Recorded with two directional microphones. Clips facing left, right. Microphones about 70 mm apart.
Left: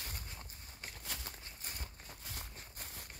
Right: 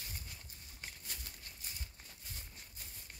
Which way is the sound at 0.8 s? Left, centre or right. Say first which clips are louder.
Left 4 dB; left.